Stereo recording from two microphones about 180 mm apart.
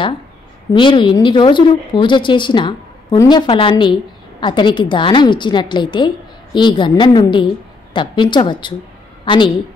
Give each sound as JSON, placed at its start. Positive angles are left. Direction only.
{"t": 0.7, "sound": "a woman's voice", "side_deg": 25}